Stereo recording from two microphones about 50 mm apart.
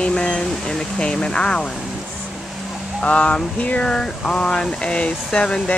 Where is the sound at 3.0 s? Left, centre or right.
Left.